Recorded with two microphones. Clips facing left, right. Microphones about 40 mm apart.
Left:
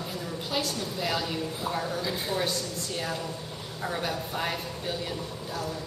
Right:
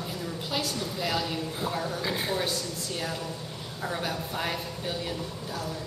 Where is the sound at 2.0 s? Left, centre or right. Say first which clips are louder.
Right 2 dB; centre.